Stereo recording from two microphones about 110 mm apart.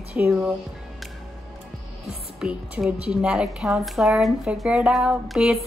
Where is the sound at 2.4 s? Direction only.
5° right (ahead or behind).